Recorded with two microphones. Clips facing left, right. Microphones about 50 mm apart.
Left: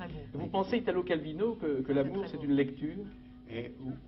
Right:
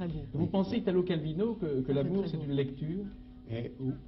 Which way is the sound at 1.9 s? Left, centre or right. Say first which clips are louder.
Even; left.